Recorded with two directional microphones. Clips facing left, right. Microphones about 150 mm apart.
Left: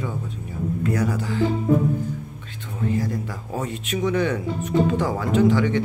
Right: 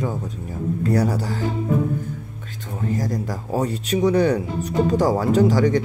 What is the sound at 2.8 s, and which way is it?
Speech, 40° right (ahead or behind).